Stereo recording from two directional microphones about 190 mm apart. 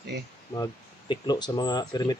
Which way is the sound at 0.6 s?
25° left (ahead or behind).